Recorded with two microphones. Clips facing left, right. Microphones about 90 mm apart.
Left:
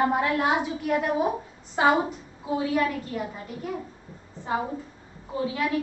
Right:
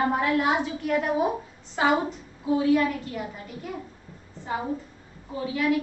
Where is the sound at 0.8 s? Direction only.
Centre (ahead or behind).